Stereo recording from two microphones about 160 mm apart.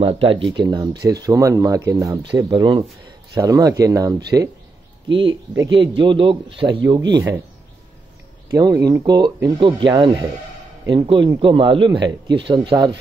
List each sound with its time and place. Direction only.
0.0 s speech: 35° right (ahead or behind); by 4.5 s 15° right (ahead or behind)
5.7 s a man's voice: 30° right (ahead or behind)
8.5 s a man's voice: 20° right (ahead or behind)